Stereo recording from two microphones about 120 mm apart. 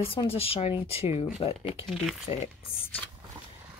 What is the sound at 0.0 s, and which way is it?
Speech, 50° left (ahead or behind).